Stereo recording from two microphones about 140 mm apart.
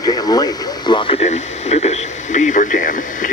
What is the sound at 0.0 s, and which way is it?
Radio, 25° left (ahead or behind).